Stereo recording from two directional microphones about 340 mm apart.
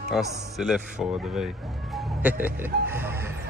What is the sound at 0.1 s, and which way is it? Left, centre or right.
Speech, centre.